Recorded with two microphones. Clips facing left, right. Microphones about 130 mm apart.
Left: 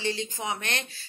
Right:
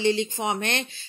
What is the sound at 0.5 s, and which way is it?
Speech, 35° right (ahead or behind).